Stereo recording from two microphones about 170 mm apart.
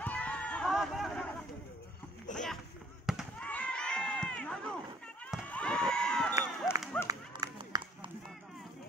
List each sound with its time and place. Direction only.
0.0 s run: 10° left (ahead or behind)
2.3 s a sound: 45° left (ahead or behind)
3.1 s fireworks: centre (ahead or behind)
3.4 s a sound: 10° left (ahead or behind)
6.7 s run: 15° left (ahead or behind)
7.1 s run: 20° right (ahead or behind)